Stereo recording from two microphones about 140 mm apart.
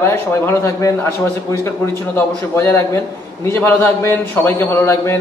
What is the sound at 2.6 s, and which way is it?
A man's voice, 15° left (ahead or behind).